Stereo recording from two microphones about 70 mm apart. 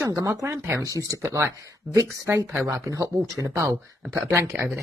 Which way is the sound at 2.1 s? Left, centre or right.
Right.